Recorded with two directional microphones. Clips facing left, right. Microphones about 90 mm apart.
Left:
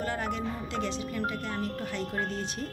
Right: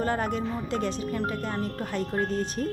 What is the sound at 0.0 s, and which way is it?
Speech, 40° right (ahead or behind).